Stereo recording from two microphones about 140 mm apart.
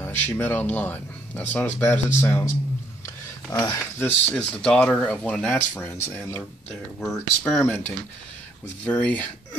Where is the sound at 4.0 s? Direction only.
10° left (ahead or behind).